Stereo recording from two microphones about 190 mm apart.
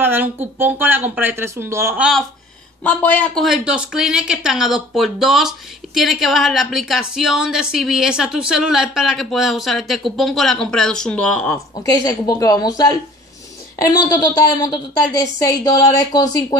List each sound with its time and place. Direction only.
0.0 s speech: 10° right (ahead or behind)
2.8 s a woman's voice: 10° left (ahead or behind)